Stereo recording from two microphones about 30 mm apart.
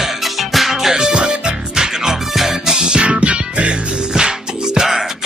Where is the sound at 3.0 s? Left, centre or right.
Right.